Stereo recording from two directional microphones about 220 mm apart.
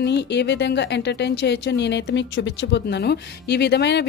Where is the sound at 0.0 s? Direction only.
50° left (ahead or behind).